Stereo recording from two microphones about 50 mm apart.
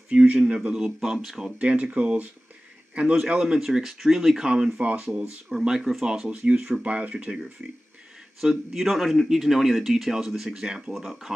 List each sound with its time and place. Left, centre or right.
0.1 s speech: right
0.7 s speech: centre
1.4 s a man's voice: right
5.5 s speech: centre; by 7.4 s right
8.4 s speech: centre
10.9 s speech: centre